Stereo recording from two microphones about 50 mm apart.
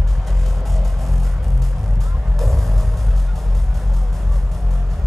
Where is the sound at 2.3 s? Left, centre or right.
Centre.